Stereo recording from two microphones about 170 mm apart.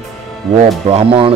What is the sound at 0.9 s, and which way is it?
Speech, 30° right (ahead or behind).